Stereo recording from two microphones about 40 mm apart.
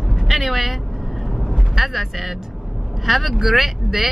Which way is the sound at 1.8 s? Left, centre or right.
Centre.